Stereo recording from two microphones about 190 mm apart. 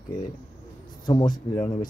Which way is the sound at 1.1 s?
25° left (ahead or behind).